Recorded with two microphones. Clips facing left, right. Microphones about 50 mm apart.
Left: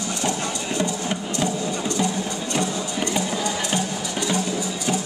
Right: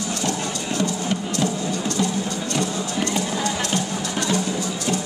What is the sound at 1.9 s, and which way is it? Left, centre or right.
Music, left.